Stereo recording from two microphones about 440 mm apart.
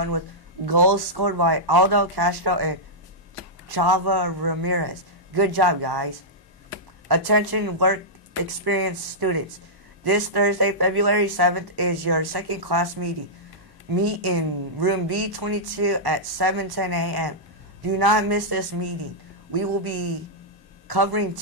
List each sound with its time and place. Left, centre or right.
0.7 s a woman's voice: right
3.7 s a woman's voice: right
7.1 s a woman's voice: right